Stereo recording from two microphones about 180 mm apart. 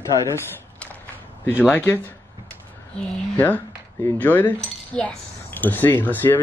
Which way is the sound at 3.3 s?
10° left (ahead or behind).